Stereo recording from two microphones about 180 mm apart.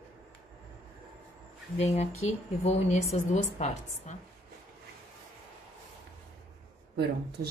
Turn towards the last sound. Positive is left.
turn(degrees=-70)  # may be behind; listen again after turning